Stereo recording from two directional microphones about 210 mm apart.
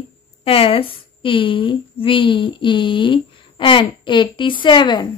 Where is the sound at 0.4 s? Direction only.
25° left (ahead or behind).